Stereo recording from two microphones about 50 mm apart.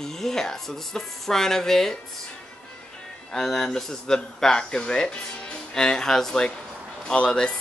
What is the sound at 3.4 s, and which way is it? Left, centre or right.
Speech, centre.